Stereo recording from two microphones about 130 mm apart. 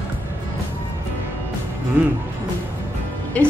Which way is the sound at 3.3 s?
10° left (ahead or behind).